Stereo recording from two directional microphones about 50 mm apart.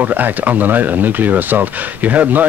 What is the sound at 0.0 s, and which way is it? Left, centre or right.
Speech, right.